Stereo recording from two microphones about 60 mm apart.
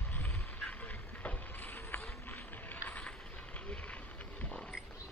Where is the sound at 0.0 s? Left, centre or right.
Left.